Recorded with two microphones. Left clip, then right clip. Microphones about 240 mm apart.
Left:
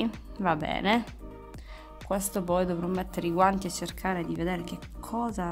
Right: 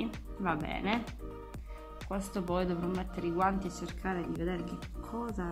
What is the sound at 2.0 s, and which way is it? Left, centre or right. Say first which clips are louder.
Speech: left 7 dB; left.